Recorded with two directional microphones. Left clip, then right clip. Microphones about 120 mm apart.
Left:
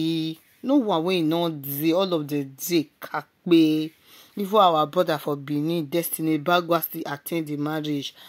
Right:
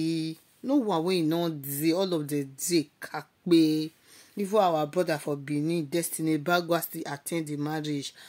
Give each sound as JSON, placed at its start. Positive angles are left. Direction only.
{"t": 0.0, "sound": "speech", "side_deg": 25}